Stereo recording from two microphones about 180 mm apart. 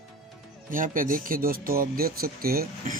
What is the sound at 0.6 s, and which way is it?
Speech, 50° right (ahead or behind).